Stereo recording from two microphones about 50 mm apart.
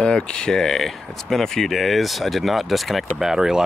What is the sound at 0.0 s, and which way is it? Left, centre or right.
Speech, centre.